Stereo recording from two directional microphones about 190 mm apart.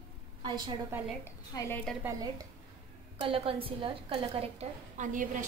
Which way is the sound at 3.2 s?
30° right (ahead or behind).